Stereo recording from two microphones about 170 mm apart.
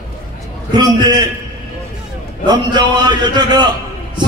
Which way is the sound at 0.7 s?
25° right (ahead or behind).